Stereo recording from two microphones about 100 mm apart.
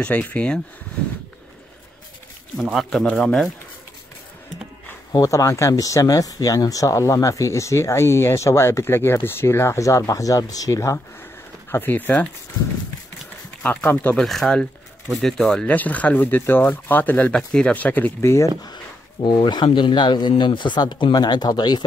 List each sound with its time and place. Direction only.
0.0 s speech: 15° left (ahead or behind)
2.5 s speech: centre (ahead or behind)
5.1 s speech: 35° left (ahead or behind)
11.7 s speech: 20° left (ahead or behind)
13.6 s speech: 15° left (ahead or behind)
14.2 s speech: 5° left (ahead or behind); by 18.5 s 25° left (ahead or behind)
19.2 s speech: 50° left (ahead or behind)